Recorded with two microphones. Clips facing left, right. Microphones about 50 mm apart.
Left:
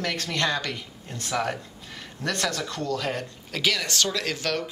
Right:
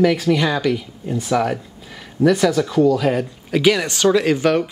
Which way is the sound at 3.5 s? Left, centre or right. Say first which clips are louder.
Right 10 dB; centre.